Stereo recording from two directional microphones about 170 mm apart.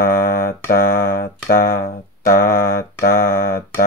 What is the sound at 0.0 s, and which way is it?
Mantra, 60° left (ahead or behind).